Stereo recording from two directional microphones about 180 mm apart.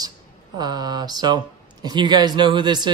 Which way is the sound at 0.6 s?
20° right (ahead or behind).